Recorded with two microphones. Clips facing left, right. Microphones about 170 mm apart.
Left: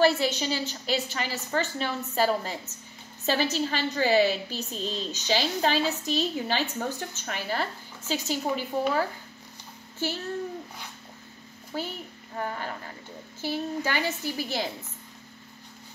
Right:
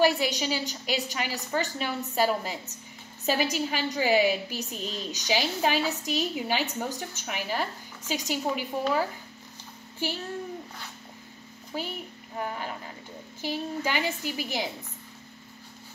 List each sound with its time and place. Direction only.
0.0 s a woman's voice: 15° right (ahead or behind)
10.0 s a woman's voice: 15° right (ahead or behind)
11.7 s a woman's voice: 15° right (ahead or behind)